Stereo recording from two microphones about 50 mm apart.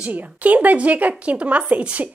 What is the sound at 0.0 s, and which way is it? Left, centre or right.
A woman's voice, right.